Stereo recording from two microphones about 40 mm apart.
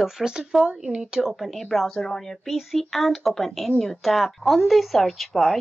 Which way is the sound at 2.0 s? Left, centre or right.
Centre.